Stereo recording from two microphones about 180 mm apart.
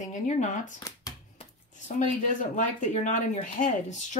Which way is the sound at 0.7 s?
20° left (ahead or behind).